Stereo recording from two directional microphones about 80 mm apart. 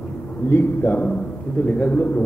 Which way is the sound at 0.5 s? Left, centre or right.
Left.